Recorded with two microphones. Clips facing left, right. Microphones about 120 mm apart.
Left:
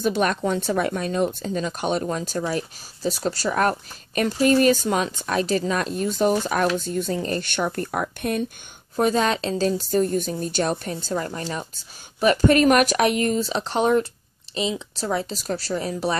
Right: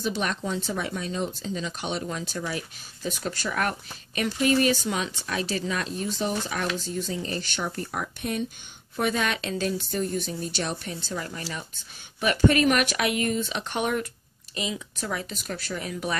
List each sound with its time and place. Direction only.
0.0 s speech: 50° left (ahead or behind)
8.9 s a woman's voice: 35° left (ahead or behind)